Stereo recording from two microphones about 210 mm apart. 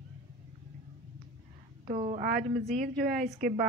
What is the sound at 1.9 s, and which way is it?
Speech, 30° right (ahead or behind).